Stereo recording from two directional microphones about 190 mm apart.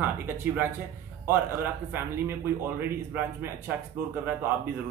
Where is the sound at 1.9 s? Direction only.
10° right (ahead or behind).